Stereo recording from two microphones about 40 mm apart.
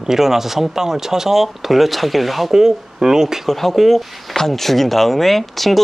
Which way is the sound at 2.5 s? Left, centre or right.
Centre.